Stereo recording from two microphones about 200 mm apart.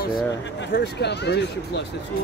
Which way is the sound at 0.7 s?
55° left (ahead or behind).